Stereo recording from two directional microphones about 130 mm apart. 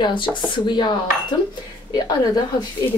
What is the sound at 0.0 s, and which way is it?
Speech, 40° left (ahead or behind).